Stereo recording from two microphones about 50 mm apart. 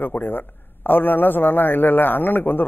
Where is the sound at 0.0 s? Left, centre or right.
Left.